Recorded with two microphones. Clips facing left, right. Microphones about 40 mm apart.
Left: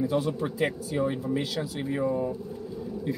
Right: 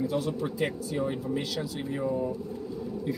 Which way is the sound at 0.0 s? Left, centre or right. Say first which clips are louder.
Left 2 dB; centre.